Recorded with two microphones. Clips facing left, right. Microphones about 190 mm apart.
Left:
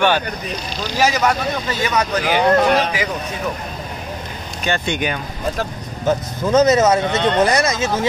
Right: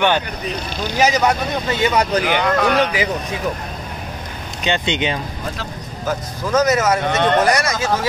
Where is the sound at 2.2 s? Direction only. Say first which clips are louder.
Left 3 dB; 35° left (ahead or behind).